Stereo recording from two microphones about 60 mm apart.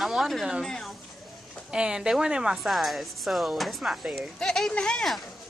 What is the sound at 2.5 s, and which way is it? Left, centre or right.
A woman's voice, centre.